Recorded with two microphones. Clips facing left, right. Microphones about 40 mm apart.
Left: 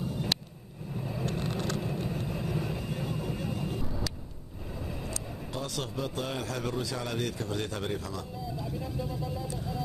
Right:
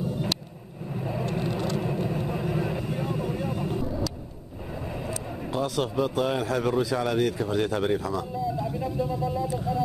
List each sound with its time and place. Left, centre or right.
0.9 s vehicle: right
5.0 s speech: centre